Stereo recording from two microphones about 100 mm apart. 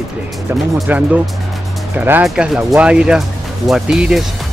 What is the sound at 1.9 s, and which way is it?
Speech, 20° right (ahead or behind).